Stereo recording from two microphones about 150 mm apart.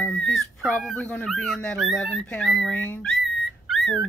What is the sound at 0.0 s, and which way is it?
Speech, 5° left (ahead or behind).